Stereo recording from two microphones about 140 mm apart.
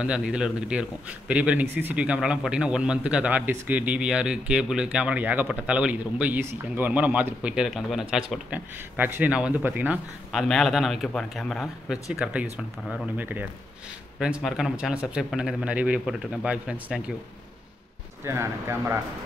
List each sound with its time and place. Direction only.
0.0 s a man's voice: 5° right (ahead or behind)
10.3 s a man's voice: centre (ahead or behind)
18.2 s a man's voice: 20° right (ahead or behind)